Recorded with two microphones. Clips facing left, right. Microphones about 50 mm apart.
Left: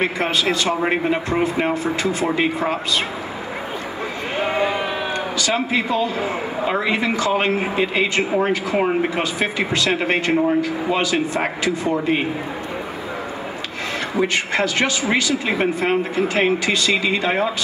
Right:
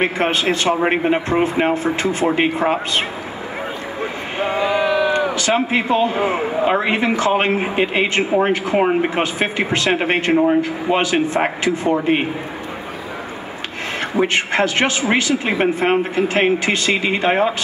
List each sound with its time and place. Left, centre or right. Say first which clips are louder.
0.0 s a man's voice: right 2 dB; right
4.6 s a sound: right 6 dB; right
5.3 s a man's voice: right 3 dB; right
10.3 s a man's voice: right 4 dB; centre
10.6 s a man's voice: right 2 dB; right
14.1 s a man's voice: right 3 dB; right